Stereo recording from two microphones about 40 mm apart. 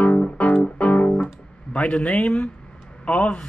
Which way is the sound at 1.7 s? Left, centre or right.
Left.